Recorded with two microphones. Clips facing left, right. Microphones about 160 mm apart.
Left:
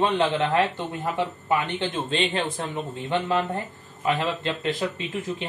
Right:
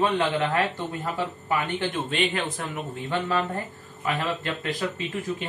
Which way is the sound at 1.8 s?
25° left (ahead or behind).